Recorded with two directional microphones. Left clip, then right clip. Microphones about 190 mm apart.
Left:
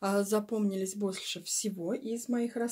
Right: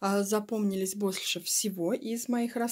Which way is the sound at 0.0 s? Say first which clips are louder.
Right 1 dB; 30° right (ahead or behind).